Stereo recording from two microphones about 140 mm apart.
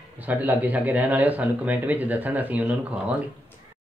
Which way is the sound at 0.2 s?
10° right (ahead or behind).